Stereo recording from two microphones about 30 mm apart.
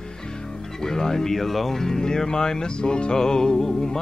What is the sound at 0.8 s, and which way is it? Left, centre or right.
Speech, centre.